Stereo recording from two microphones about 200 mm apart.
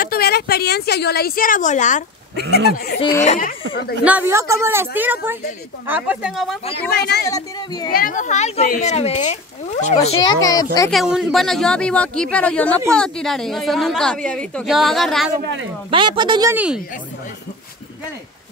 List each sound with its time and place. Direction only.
0.0 s a woman's voice: 50° left (ahead or behind)
2.5 s a woman's voice: 50° left (ahead or behind)
4.0 s a woman's voice: 10° right (ahead or behind)
6.9 s speech: 55° left (ahead or behind)
7.2 s speech: 20° left (ahead or behind)
7.9 s speech: 45° left (ahead or behind)
10.4 s speech: 20° left (ahead or behind)
10.9 s a woman's voice: centre (ahead or behind)
15.3 s speech: 60° right (ahead or behind)
15.9 s a woman's voice: 25° right (ahead or behind)
16.5 s a woman's voice: 5° right (ahead or behind)